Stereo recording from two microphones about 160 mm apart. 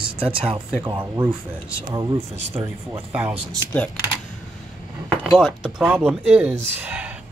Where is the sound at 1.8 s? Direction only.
25° right (ahead or behind).